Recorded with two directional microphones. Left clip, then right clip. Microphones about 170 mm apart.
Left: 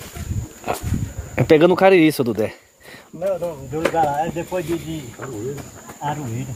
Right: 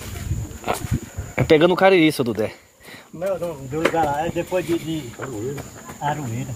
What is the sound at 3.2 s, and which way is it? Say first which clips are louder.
Speech: left 2 dB; 55° right (ahead or behind).